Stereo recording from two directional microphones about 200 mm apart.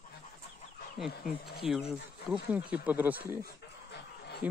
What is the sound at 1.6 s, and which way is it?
Speech, centre (ahead or behind).